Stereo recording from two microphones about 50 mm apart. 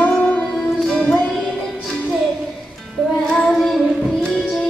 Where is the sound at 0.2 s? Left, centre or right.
Centre.